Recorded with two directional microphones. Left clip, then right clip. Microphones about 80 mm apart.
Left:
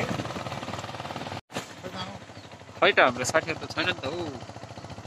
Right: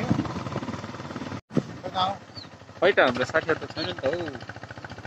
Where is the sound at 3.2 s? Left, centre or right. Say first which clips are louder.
Right 2 dB; centre.